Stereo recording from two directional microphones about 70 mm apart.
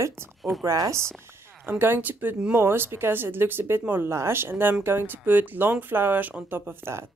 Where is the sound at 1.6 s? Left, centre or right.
Right.